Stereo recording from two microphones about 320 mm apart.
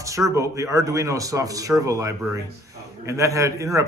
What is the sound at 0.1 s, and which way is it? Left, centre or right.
A man's voice, centre.